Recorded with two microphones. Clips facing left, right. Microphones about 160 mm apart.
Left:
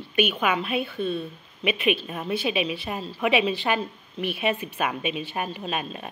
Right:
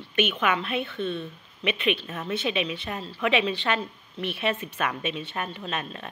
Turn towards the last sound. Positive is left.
turn(degrees=15)  # may be behind; listen again after turning